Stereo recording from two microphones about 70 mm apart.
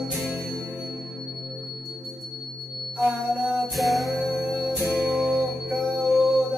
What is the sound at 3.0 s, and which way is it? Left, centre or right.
Music, right.